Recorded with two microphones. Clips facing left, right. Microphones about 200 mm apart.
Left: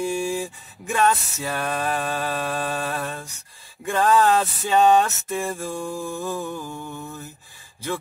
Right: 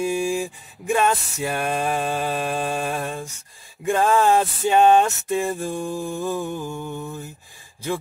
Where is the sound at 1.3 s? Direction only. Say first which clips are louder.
Right 3 dB; 15° right (ahead or behind).